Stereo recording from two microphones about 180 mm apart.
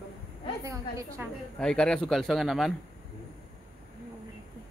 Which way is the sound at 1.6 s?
5° left (ahead or behind).